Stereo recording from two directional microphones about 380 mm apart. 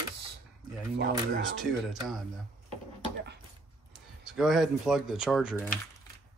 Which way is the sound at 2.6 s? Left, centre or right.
Right.